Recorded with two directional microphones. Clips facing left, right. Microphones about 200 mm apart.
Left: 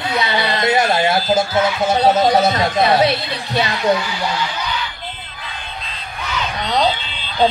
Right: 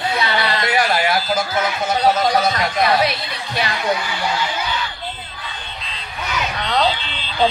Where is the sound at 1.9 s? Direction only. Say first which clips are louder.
Left 2 dB; 30° left (ahead or behind).